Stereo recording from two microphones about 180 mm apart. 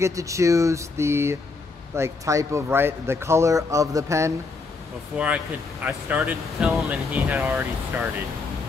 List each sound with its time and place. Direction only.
0.0 s speech: 15° right (ahead or behind)
5.1 s speech: 5° right (ahead or behind)